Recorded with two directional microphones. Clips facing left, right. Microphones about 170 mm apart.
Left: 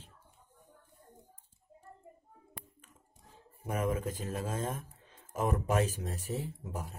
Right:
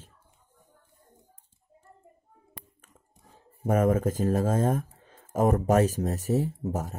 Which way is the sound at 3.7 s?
45° right (ahead or behind).